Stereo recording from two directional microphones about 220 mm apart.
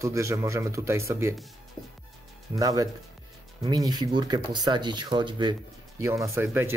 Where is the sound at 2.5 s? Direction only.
15° right (ahead or behind).